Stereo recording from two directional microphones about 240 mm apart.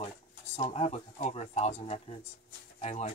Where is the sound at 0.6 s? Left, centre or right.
Left.